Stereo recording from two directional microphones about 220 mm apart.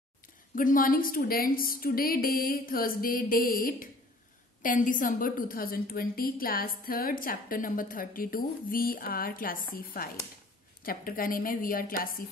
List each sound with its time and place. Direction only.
0.6 s a woman's voice: 40° left (ahead or behind)